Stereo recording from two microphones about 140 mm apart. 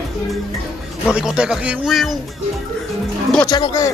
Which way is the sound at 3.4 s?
30° left (ahead or behind).